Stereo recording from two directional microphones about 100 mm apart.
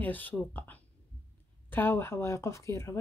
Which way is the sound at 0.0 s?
15° left (ahead or behind).